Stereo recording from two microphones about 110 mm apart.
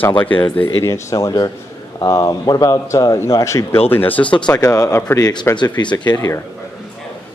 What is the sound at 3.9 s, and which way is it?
Speech, 15° left (ahead or behind).